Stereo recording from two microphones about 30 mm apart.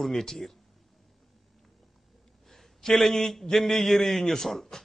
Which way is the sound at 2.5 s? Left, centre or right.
Centre.